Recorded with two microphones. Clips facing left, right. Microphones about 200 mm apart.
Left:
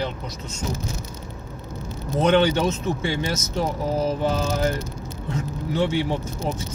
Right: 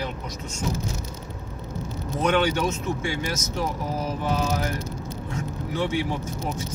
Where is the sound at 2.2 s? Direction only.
25° left (ahead or behind).